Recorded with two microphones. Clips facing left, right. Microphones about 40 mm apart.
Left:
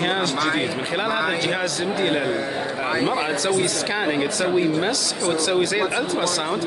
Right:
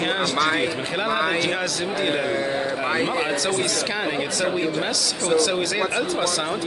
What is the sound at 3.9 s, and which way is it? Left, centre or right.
Speech, centre.